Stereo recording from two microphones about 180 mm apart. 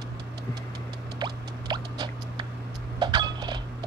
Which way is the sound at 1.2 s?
25° right (ahead or behind).